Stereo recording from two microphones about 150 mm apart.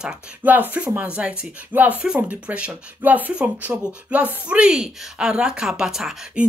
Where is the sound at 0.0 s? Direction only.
5° right (ahead or behind).